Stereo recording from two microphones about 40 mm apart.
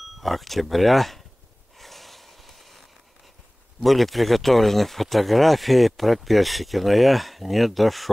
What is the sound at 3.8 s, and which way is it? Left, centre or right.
Speech, centre.